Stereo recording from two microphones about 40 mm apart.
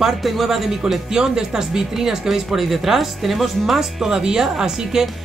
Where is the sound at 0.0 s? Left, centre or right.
Centre.